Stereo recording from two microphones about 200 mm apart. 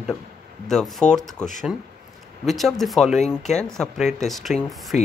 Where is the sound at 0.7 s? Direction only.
Centre (ahead or behind).